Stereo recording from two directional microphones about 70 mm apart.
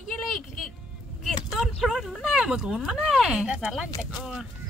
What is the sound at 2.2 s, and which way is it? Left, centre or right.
Speech, centre.